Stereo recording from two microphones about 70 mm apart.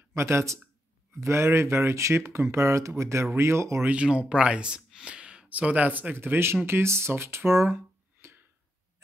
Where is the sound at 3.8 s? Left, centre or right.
Centre; by 8.4 s right.